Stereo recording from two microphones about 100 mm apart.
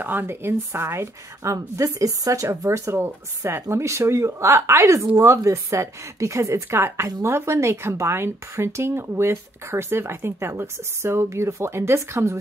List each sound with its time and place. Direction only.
0.0 s speech: 20° right (ahead or behind)